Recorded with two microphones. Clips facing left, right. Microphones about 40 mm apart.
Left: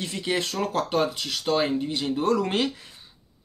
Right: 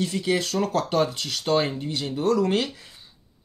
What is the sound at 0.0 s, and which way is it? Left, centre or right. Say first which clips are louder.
Speech: right 3 dB; centre.